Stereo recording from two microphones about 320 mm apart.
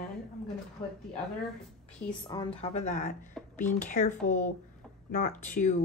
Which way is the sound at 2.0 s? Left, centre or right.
Centre.